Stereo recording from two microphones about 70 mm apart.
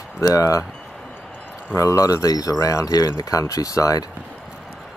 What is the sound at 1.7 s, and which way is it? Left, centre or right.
Speech, left.